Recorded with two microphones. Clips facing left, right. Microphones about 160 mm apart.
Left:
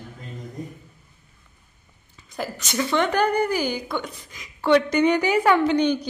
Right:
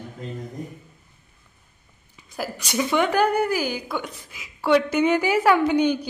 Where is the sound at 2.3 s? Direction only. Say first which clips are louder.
Right 1 dB; 10° right (ahead or behind).